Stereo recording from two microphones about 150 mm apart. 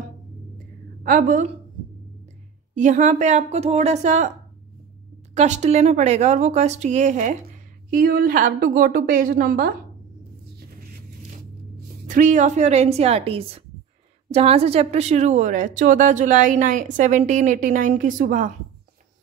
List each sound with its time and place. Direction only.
1.0 s speech: 65° right (ahead or behind)
2.7 s speech: 55° right (ahead or behind)
5.3 s speech: 50° right (ahead or behind)
7.9 s a woman's voice: 70° right (ahead or behind)
12.1 s speech: 55° right (ahead or behind)